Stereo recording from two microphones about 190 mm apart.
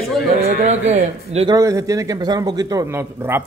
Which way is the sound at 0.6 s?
35° right (ahead or behind).